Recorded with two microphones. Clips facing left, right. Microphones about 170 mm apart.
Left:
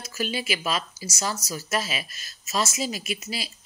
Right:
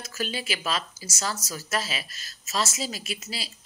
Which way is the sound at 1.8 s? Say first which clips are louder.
Left 2 dB; 35° right (ahead or behind).